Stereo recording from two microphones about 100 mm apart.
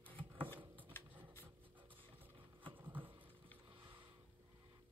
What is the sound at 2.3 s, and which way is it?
Vehicle, 55° right (ahead or behind).